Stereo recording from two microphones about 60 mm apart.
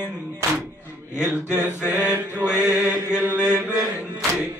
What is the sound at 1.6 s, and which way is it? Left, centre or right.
Mantra, right.